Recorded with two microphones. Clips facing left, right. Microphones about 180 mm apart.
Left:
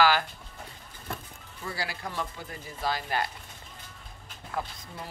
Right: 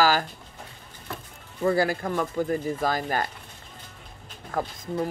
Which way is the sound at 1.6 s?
50° right (ahead or behind).